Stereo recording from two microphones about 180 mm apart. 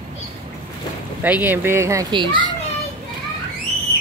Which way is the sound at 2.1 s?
25° right (ahead or behind).